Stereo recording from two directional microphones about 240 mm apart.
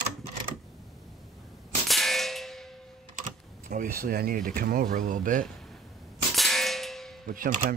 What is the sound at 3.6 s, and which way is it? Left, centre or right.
Speech, right.